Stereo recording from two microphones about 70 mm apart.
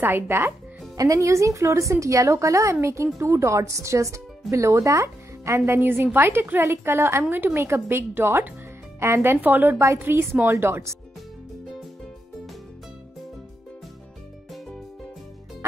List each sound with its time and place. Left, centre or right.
0.0 s a woman's voice: right
0.9 s speech: right
5.8 s a woman's voice: right